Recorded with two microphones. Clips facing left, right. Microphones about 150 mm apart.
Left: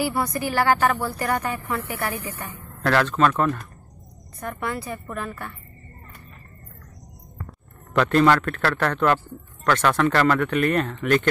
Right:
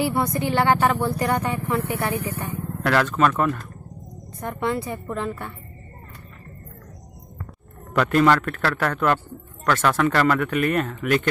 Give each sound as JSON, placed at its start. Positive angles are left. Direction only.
{"t": 0.0, "sound": "a woman's voice", "side_deg": -25}
{"t": 2.1, "sound": "speech", "side_deg": -65}
{"t": 2.8, "sound": "speech", "side_deg": -10}
{"t": 4.4, "sound": "a woman's voice", "side_deg": -25}
{"t": 7.9, "sound": "speech", "side_deg": -5}